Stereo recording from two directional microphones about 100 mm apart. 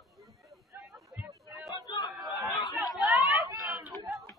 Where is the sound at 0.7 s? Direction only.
35° right (ahead or behind).